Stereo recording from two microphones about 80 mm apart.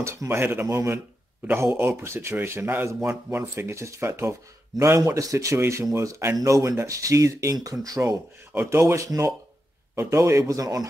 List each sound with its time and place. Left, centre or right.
0.0 s speech: right
8.6 s speech: right
10.5 s speech: right